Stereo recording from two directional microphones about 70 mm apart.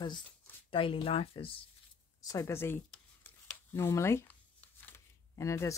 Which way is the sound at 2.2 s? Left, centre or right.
Left.